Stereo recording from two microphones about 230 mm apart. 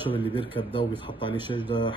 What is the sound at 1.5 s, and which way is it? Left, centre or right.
Speech, left.